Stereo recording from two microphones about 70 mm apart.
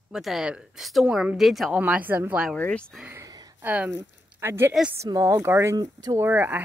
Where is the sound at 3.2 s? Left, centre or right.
Right.